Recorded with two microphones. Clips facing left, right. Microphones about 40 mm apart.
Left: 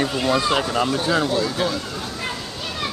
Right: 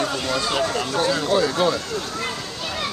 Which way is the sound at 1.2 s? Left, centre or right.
Centre.